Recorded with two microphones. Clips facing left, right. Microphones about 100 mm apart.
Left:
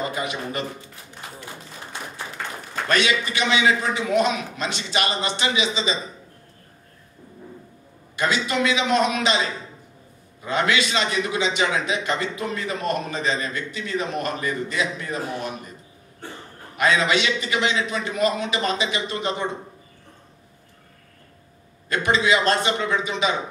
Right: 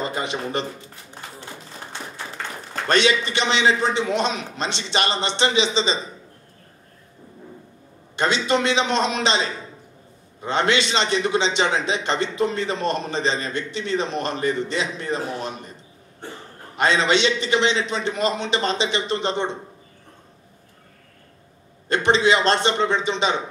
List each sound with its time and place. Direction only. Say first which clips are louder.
0.0 s speech: right 1 dB; 30° right (ahead or behind)
2.9 s a man's voice: right 3 dB; 30° right (ahead or behind)
8.2 s a man's voice: right 2 dB; 30° right (ahead or behind)
16.7 s a man's voice: right 1 dB; 30° right (ahead or behind)
21.8 s a man's voice: right 3 dB; 30° right (ahead or behind)